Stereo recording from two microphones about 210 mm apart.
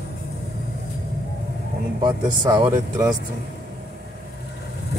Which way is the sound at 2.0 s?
20° right (ahead or behind).